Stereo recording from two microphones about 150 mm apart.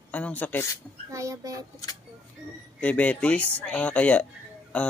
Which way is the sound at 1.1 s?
20° right (ahead or behind).